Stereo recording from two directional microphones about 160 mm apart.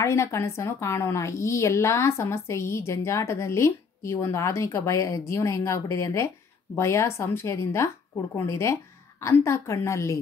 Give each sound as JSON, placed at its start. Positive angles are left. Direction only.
{"t": 0.0, "sound": "a woman's voice", "side_deg": 20}